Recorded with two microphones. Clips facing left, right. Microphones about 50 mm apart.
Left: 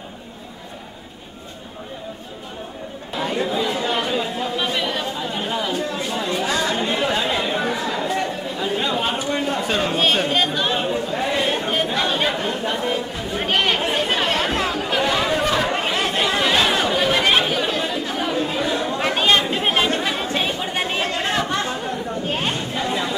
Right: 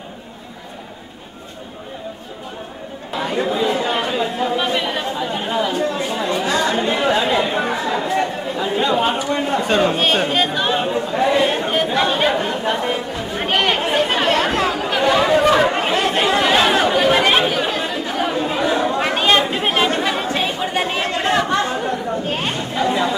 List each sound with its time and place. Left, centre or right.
3.2 s chatter: centre
9.6 s a man's voice: centre
13.3 s chatter: centre; by 15.7 s right
15.7 s chatter: centre
22.8 s chatter: centre